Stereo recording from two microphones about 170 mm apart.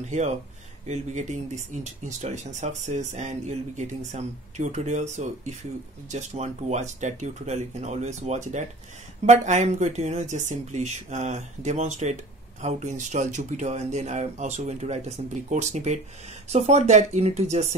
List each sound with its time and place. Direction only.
0.0 s speech: 45° right (ahead or behind)